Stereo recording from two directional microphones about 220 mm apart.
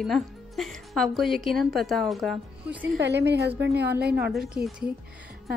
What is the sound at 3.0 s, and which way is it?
Speech, 50° right (ahead or behind).